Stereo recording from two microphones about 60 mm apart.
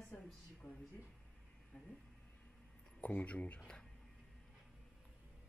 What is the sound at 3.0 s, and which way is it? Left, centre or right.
Speech, left.